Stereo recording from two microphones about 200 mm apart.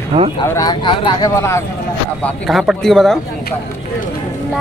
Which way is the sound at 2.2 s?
Centre (ahead or behind).